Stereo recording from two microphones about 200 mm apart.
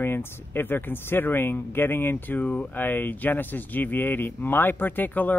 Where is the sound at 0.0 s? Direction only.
10° left (ahead or behind).